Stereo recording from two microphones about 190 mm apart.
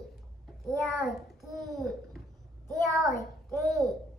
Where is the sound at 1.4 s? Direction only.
Centre (ahead or behind).